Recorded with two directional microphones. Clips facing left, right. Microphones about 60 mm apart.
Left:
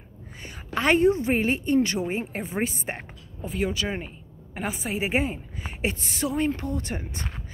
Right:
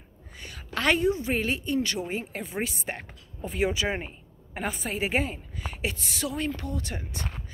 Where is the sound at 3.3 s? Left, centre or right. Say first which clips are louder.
Left 1 dB; centre.